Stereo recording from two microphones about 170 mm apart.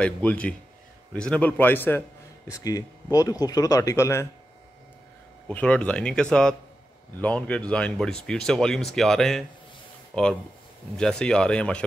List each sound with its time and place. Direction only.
0.0 s a man's voice: 10° left (ahead or behind)
5.5 s a man's voice: 5° left (ahead or behind)